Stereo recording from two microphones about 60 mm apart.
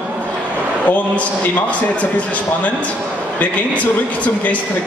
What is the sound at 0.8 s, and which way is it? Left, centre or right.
Speech, left.